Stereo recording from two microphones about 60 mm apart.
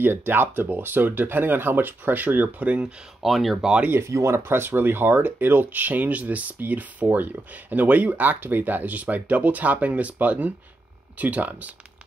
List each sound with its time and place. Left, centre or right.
0.0 s speech: right
3.2 s speech: centre
4.0 s speech: right